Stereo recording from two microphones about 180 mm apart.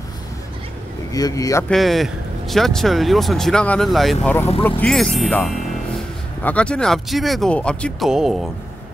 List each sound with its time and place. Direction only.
1.1 s speech: 20° left (ahead or behind)
1.7 s speech: centre (ahead or behind)